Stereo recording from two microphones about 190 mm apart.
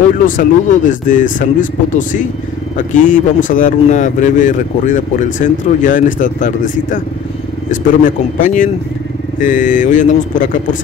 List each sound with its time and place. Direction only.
0.4 s speech: 45° left (ahead or behind)